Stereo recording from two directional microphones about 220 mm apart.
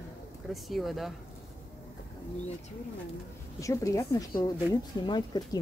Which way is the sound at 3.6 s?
15° left (ahead or behind).